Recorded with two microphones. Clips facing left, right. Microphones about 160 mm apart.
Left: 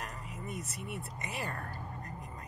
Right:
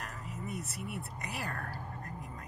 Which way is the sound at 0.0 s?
Centre (ahead or behind).